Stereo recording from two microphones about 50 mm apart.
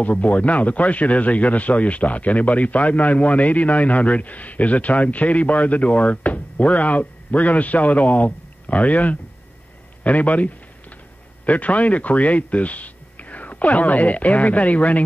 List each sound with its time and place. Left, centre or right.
0.0 s speech: left